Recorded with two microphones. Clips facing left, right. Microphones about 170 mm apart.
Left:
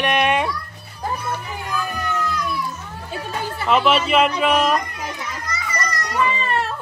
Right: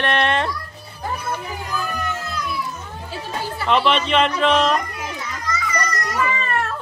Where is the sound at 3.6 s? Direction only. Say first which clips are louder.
Left 1 dB; 5° left (ahead or behind).